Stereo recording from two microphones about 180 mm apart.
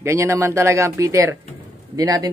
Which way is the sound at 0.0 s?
15° right (ahead or behind).